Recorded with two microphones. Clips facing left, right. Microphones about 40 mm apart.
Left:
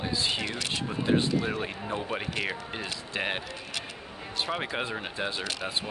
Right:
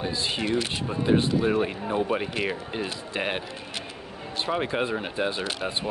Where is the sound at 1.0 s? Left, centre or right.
Centre.